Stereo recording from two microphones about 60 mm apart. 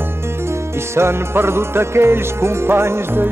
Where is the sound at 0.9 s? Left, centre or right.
Right.